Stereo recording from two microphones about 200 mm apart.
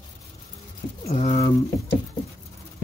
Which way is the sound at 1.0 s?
35° left (ahead or behind).